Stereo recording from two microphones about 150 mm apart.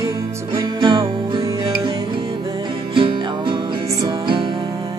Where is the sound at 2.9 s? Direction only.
35° right (ahead or behind).